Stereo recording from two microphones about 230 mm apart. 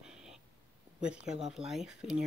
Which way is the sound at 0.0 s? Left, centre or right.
Centre.